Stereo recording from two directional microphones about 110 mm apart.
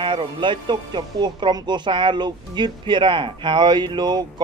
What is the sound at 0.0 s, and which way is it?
Speech, 50° right (ahead or behind).